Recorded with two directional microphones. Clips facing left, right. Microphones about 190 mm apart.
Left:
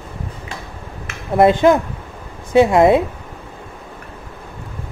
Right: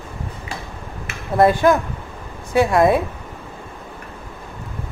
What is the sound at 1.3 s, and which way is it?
A woman's voice, 20° left (ahead or behind).